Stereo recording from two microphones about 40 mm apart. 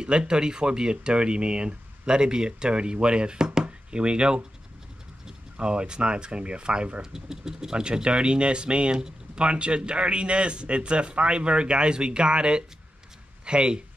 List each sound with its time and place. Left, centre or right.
0.0 s speech: right